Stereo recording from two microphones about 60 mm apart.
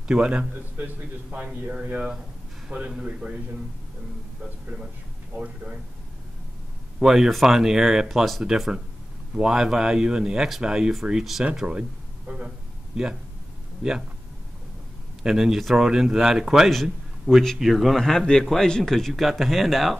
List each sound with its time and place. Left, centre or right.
0.1 s speech: centre
0.7 s a man's voice: right
1.7 s speech: centre
5.3 s speech: centre
7.0 s speech: centre
12.4 s a sound: centre
13.8 s speech: centre
15.2 s a man's voice: centre